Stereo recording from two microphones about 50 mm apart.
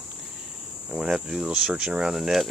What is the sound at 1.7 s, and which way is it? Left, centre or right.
Speech, centre.